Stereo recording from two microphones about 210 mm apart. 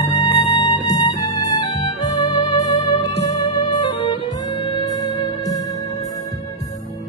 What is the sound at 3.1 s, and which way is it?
Music, 30° left (ahead or behind).